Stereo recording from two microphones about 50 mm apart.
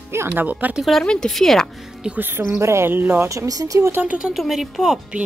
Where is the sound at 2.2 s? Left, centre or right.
Right.